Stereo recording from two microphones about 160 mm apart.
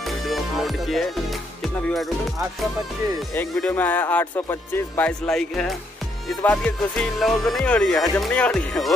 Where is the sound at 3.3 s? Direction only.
10° left (ahead or behind).